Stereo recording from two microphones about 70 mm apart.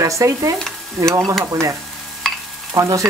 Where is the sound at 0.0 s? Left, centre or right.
Right.